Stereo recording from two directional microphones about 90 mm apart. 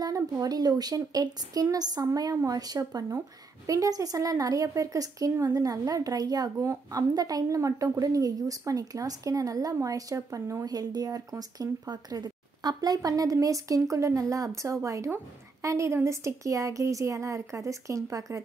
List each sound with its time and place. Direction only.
0.0 s a woman's voice: 45° right (ahead or behind)